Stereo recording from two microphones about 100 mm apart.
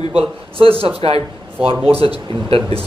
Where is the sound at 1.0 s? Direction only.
75° right (ahead or behind).